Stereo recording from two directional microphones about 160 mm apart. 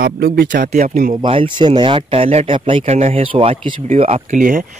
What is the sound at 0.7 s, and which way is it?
Speech, 50° right (ahead or behind).